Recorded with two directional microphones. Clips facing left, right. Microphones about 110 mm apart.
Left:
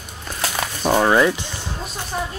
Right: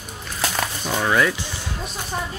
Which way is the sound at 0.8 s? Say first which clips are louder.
Left 9 dB; 45° left (ahead or behind).